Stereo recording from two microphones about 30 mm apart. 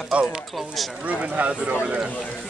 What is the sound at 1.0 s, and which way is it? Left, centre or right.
Speech, right.